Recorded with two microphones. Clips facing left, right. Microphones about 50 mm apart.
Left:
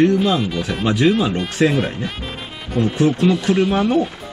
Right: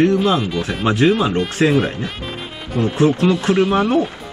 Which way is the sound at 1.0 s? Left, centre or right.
Right.